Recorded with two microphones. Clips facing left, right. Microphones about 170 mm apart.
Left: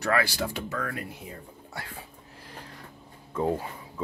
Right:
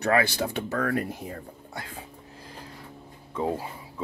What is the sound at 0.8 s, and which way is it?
Speech, 45° right (ahead or behind).